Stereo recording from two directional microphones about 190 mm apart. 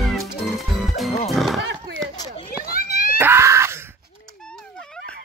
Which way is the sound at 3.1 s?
10° right (ahead or behind).